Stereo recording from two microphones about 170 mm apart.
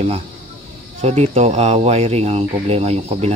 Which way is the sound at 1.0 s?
40° right (ahead or behind).